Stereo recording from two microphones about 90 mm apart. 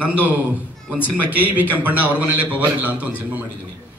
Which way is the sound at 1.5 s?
20° right (ahead or behind).